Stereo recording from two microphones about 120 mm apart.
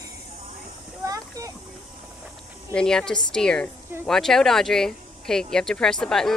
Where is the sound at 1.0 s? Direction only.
30° right (ahead or behind).